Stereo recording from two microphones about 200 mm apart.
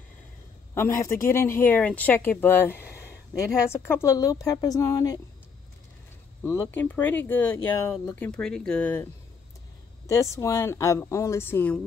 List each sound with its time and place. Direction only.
0.7 s speech: 15° left (ahead or behind)
6.4 s speech: 10° left (ahead or behind)